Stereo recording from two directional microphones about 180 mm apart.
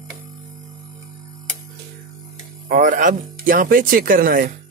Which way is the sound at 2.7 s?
45° right (ahead or behind).